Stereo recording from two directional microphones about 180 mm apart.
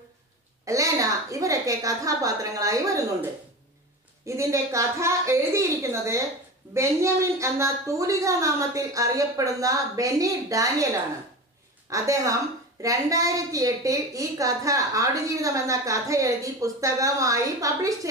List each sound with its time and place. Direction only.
0.7 s a woman's voice: 15° right (ahead or behind)
4.3 s a woman's voice: 15° right (ahead or behind)
11.9 s a woman's voice: 15° right (ahead or behind)